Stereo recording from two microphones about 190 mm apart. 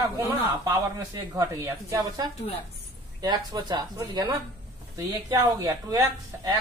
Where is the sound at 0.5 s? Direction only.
15° right (ahead or behind).